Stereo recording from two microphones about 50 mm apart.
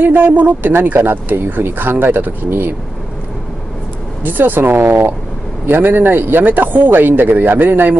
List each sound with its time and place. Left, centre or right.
0.0 s speech: right
0.9 s speech: right
4.2 s speech: right